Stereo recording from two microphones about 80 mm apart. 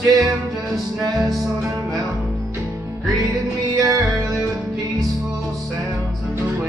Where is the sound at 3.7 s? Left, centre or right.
Right.